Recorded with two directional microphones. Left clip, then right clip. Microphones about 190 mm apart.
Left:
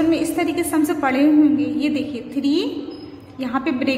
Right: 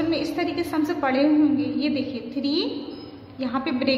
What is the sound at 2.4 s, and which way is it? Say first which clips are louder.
A woman's voice: left 5 dB; 10° left (ahead or behind).